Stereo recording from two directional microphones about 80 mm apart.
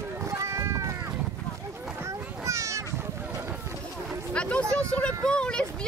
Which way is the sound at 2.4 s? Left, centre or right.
Right.